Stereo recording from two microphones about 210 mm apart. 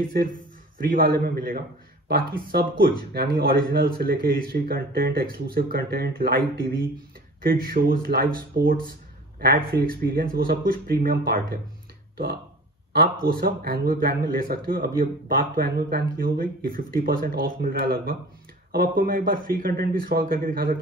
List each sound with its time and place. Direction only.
0.2 s a man's voice: 45° right (ahead or behind)
12.9 s a man's voice: 45° right (ahead or behind)